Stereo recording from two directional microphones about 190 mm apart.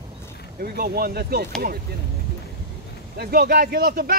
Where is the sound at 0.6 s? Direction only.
55° right (ahead or behind).